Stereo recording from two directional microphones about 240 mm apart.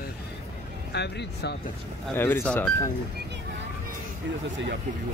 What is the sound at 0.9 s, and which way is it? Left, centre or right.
Speech, left.